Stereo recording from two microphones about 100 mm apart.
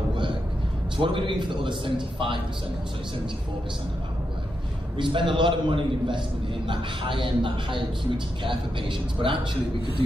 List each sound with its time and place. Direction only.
0.9 s a man's voice: 60° right (ahead or behind)
4.9 s a man's voice: 55° right (ahead or behind)